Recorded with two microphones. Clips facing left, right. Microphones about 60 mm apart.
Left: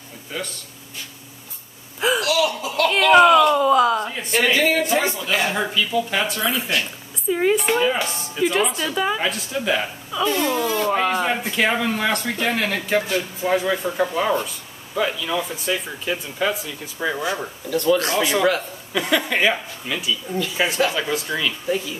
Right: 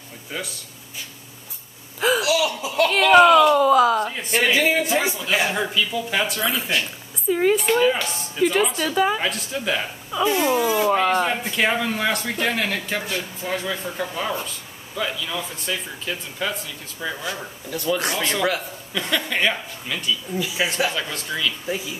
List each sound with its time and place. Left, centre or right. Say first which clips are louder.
0.3 s speech: left 1 dB; centre
2.0 s gasp: even; centre
2.2 s laughter: left 1 dB; centre
2.9 s a sound: even; centre
4.8 s speech: left 1 dB; centre
10.1 s speech: right 1 dB; centre
10.9 s speech: right 1 dB; centre
13.4 s speech: left 8 dB; centre
17.6 s speech: left 5 dB; centre
20.3 s speech: left 3 dB; centre
20.9 s speech: left 4 dB; centre